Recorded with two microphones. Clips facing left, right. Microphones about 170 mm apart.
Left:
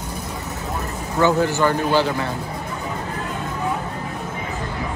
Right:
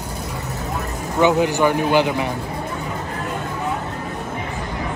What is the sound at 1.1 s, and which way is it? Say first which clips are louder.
A man's voice: right 2 dB; 15° right (ahead or behind).